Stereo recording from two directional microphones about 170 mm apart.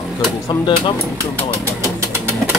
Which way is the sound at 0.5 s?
30° left (ahead or behind).